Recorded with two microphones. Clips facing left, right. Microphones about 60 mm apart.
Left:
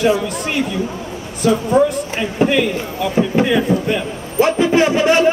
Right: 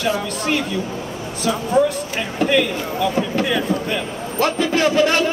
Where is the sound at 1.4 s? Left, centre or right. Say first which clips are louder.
Left 4 dB; centre.